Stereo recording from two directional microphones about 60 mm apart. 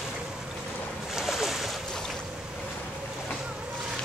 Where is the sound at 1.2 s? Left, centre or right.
Centre.